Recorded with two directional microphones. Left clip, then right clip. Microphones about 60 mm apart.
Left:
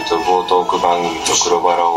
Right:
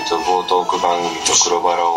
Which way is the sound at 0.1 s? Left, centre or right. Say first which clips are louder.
Left 2 dB; right.